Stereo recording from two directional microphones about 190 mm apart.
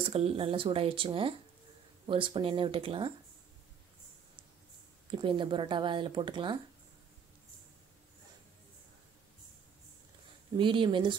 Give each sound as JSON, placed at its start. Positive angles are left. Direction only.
{"t": 0.1, "sound": "speech", "side_deg": -30}
{"t": 5.1, "sound": "speech", "side_deg": -25}
{"t": 10.6, "sound": "speech", "side_deg": -25}